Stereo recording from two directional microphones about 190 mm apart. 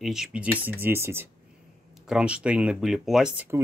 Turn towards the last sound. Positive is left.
turn(degrees=-5)  # may be behind; listen again after turning